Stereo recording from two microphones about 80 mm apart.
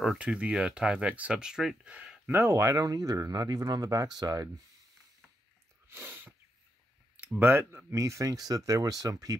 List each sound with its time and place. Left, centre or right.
0.2 s speech: centre
2.2 s speech: right
5.9 s a sound: right
7.3 s speech: right
7.9 s speech: right